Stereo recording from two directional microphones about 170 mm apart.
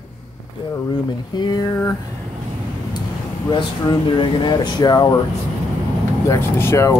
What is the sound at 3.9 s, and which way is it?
Speech, 25° left (ahead or behind).